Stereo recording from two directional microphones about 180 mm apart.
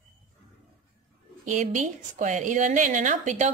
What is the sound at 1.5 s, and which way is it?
A woman's voice, 45° right (ahead or behind).